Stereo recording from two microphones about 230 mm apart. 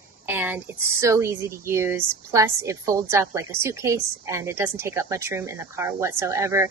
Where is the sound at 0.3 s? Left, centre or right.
Centre.